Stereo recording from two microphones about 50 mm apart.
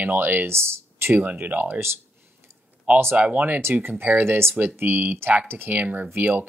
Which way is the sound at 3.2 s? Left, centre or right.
Right.